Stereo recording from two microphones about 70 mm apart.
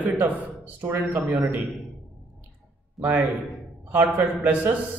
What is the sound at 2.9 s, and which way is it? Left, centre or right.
Speech, right.